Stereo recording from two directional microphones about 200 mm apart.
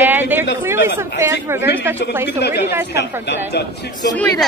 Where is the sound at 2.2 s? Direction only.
55° left (ahead or behind).